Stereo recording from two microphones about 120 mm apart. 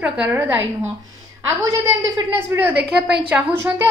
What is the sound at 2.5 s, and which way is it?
Speech, 15° right (ahead or behind).